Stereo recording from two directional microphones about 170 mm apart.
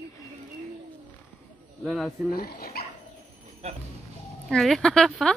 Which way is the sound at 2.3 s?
65° left (ahead or behind).